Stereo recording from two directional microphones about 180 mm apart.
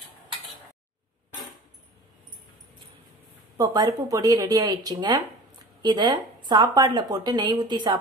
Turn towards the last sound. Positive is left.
turn(degrees=-25)  # may be behind; listen again after turning